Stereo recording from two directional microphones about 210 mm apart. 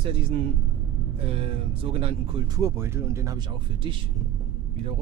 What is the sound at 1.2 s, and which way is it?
Speech, 25° right (ahead or behind).